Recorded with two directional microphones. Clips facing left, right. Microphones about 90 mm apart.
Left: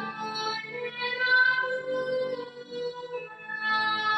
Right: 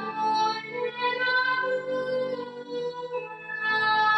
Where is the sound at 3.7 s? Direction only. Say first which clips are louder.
Right 6 dB; 35° right (ahead or behind).